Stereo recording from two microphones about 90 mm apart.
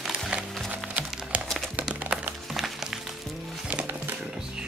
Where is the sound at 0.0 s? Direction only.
5° right (ahead or behind).